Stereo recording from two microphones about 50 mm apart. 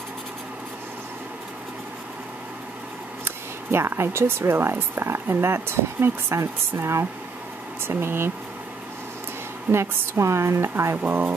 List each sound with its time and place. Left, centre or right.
3.3 s speech: right
6.3 s speech: right
7.8 s speech: right
9.7 s a woman's voice: right
11.0 s speech: right